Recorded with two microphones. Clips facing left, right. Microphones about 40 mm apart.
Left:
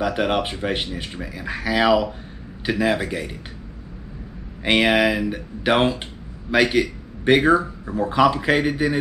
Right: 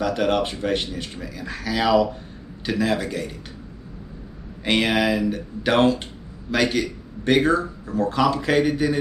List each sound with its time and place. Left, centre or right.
0.0 s a man's voice: centre
4.6 s a man's voice: centre